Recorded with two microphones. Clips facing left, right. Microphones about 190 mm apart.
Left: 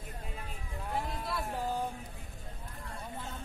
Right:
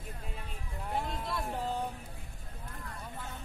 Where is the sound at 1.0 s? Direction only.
Centre (ahead or behind).